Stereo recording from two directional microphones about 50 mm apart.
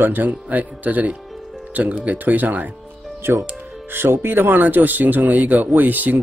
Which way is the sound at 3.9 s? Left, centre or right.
Right.